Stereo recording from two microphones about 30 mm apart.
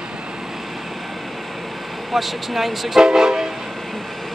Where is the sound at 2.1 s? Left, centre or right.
Centre.